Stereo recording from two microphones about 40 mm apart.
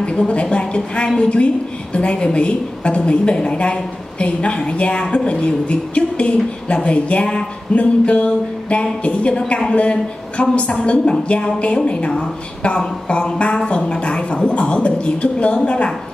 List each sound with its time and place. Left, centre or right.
0.0 s a woman's voice: left